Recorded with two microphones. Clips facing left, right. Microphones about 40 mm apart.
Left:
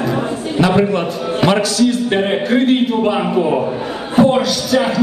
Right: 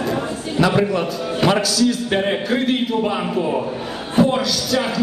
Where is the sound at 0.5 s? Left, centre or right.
Left.